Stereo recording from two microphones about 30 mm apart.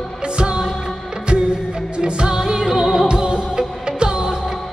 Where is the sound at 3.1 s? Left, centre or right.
Right.